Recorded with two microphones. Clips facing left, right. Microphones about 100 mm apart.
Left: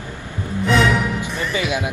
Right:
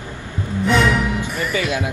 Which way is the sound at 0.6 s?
Centre (ahead or behind).